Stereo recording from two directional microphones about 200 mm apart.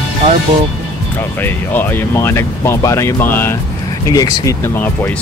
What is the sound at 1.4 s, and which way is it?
Speech, 10° left (ahead or behind).